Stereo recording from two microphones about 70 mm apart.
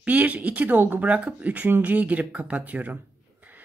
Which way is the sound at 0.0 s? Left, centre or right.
Right.